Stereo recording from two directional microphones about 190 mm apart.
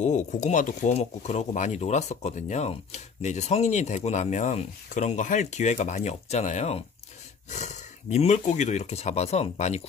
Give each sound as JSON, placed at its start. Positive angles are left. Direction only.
{"t": 0.0, "sound": "speech", "side_deg": 40}